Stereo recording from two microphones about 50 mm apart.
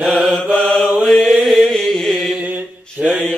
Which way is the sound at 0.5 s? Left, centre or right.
Left.